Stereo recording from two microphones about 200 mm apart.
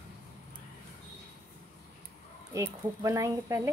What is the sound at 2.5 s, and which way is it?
Speech, 15° right (ahead or behind).